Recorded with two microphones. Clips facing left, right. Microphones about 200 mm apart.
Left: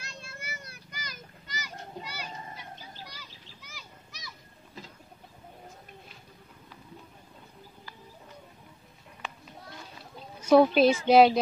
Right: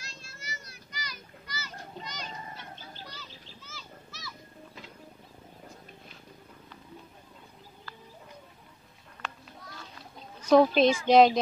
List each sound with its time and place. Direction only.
0.0 s children playing: 60° left (ahead or behind)
1.5 s children playing: 10° left (ahead or behind)
3.1 s bird: 10° left (ahead or behind)
10.4 s a woman's voice: 10° left (ahead or behind)